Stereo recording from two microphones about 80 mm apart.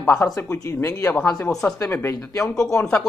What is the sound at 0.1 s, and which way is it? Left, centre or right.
Speech, left.